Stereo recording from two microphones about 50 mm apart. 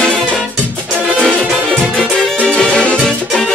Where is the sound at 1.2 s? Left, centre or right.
Centre.